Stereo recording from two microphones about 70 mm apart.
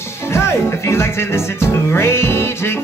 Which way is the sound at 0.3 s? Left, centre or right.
Left.